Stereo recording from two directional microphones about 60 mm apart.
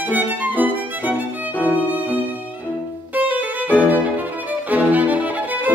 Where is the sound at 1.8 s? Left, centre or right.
Right.